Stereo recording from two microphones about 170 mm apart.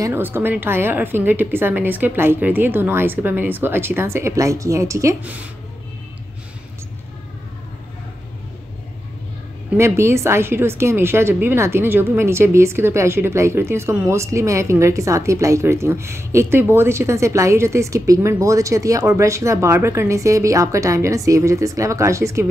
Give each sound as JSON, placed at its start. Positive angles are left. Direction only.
{"t": 0.0, "sound": "a woman's voice", "side_deg": -15}
{"t": 9.8, "sound": "a woman's voice", "side_deg": -15}